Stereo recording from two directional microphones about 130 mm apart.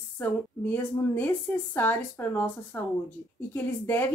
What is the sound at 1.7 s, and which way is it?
Speech, 15° left (ahead or behind).